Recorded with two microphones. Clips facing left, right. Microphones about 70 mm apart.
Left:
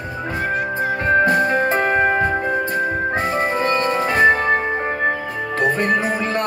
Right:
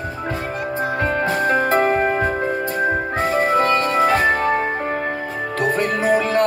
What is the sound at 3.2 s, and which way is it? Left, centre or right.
Organ, centre.